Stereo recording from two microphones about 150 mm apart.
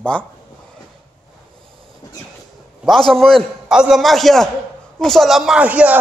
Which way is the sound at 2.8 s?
Centre (ahead or behind).